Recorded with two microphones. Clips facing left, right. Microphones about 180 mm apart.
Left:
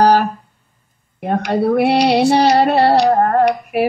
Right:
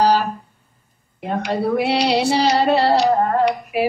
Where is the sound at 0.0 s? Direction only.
55° left (ahead or behind).